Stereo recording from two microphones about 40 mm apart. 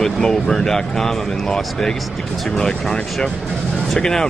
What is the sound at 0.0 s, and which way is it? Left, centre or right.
Speech, centre.